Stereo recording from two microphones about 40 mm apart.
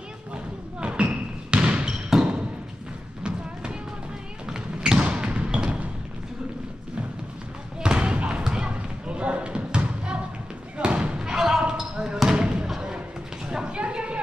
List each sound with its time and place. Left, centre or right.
0.3 s basketball bounce: right
4.5 s thump: centre
7.8 s basketball bounce: right
11.3 s basketball bounce: centre
12.6 s thump: centre
13.5 s a sound: right